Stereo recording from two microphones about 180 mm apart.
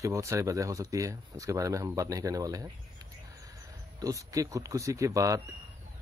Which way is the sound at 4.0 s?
20° right (ahead or behind).